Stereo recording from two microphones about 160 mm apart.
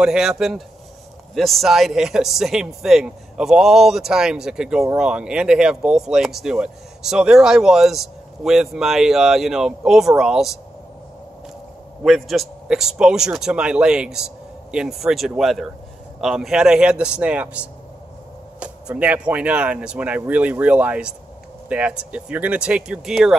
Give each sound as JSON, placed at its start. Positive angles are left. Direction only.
{"t": 0.0, "sound": "speech", "side_deg": -5}
{"t": 12.0, "sound": "speech", "side_deg": 0}